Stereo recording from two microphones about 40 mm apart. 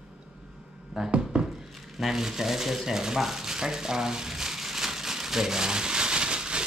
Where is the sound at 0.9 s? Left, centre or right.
Right.